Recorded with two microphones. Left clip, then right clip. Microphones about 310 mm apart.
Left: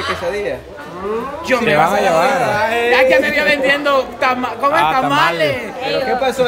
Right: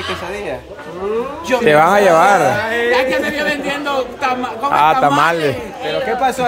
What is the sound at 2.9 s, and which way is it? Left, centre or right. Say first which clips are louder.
A man's voice: left 6 dB; centre.